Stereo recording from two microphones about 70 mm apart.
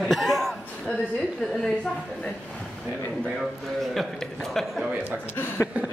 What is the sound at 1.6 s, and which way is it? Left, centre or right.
Speech, centre.